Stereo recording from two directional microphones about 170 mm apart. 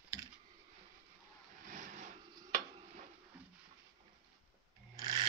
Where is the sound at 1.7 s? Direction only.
50° right (ahead or behind).